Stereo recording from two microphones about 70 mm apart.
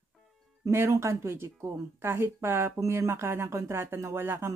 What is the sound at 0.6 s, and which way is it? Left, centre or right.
Speech, right.